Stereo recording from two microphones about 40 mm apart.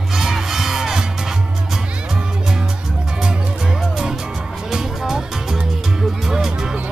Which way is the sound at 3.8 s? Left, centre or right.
Centre.